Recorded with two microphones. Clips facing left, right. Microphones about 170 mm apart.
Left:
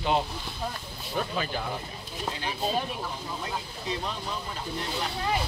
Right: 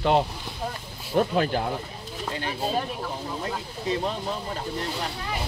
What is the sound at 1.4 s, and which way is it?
Speech, 60° right (ahead or behind).